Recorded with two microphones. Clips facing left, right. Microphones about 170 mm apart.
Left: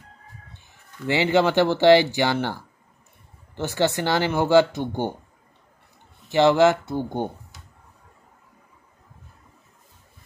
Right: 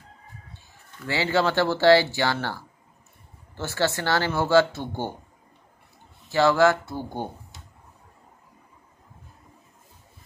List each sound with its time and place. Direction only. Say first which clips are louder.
1.0 s speech: left 4 dB; 20° left (ahead or behind)
6.2 s speech: left 3 dB; 20° left (ahead or behind)